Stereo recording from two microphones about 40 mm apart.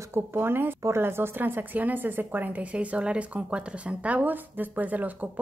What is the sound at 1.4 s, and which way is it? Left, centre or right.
A woman's voice, right.